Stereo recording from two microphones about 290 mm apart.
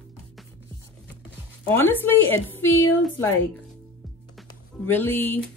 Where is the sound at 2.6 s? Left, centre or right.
Left.